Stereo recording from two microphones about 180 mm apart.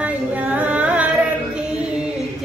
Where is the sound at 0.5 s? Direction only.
10° right (ahead or behind).